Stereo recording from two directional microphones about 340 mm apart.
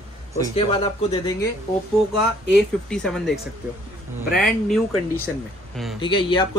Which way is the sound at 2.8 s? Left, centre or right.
Centre.